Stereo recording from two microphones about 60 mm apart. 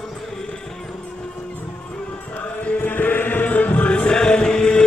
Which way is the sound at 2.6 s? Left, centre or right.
Left.